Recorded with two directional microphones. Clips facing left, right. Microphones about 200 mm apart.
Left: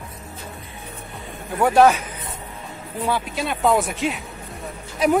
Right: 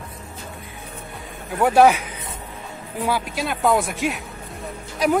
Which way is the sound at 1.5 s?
5° right (ahead or behind).